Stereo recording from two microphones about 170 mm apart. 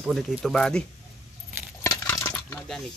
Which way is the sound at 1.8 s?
20° left (ahead or behind).